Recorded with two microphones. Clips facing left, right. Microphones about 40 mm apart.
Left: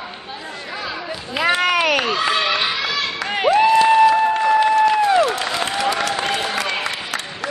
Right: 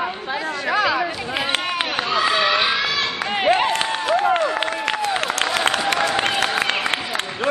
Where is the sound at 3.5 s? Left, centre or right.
Right.